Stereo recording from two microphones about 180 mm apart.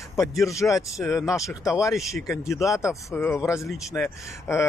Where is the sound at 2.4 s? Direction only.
Centre (ahead or behind).